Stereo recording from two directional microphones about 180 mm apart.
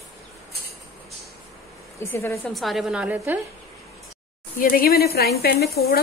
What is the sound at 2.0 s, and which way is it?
Speech, 15° left (ahead or behind).